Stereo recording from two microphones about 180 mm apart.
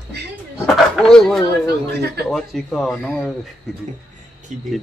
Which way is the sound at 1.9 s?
65° right (ahead or behind).